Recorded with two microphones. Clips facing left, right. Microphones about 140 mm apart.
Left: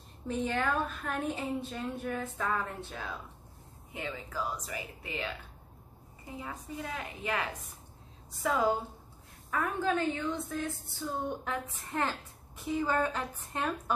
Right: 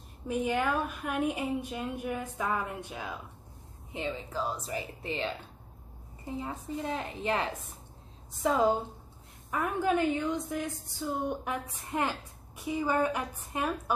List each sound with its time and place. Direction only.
0.3 s a woman's voice: 10° right (ahead or behind)
3.9 s a woman's voice: 25° right (ahead or behind); by 13.9 s 10° right (ahead or behind)